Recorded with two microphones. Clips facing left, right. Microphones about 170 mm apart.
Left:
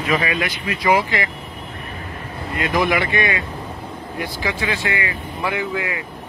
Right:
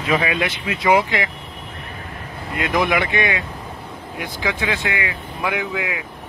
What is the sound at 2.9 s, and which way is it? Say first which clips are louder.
Speech: even; 20° right (ahead or behind).